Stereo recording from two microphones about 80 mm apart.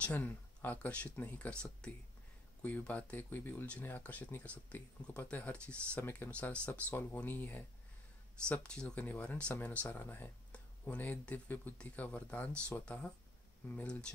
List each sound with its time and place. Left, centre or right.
0.0 s speech: centre
8.5 s speech: centre